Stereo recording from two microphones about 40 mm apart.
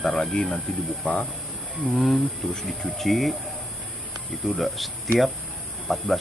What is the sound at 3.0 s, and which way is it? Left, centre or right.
Speech, centre.